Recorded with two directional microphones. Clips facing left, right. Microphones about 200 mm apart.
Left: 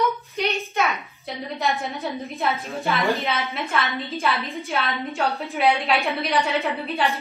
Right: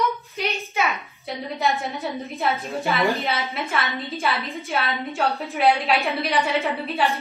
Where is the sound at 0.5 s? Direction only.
Centre (ahead or behind).